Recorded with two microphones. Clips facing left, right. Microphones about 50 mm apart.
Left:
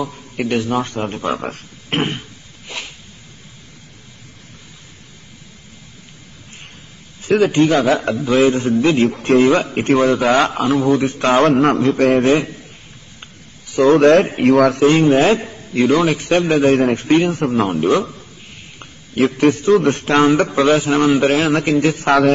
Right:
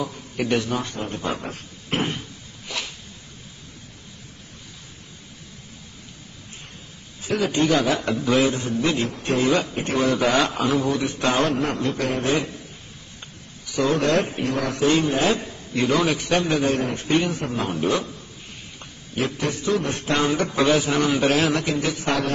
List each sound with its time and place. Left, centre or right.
0.0 s a man's voice: left
0.7 s a man's voice: left
1.4 s a sound: left
2.7 s a sound: left
7.2 s a man's voice: left
9.1 s speech: left
9.4 s a man's voice: left
13.2 s a sound: left
13.8 s a man's voice: left
14.5 s a man's voice: left
14.8 s a man's voice: left
17.6 s a man's voice: left
18.8 s a sound: left
19.8 s a man's voice: left